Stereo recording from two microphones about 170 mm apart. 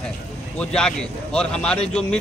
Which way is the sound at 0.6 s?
5° left (ahead or behind).